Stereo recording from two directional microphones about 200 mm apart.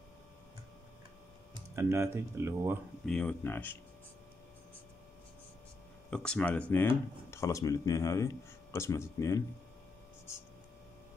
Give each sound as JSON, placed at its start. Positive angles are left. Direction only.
{"t": 1.8, "sound": "speech", "side_deg": -10}
{"t": 3.1, "sound": "speech", "side_deg": 5}
{"t": 6.0, "sound": "speech", "side_deg": 5}